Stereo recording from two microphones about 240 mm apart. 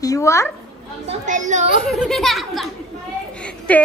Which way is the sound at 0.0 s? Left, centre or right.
Centre.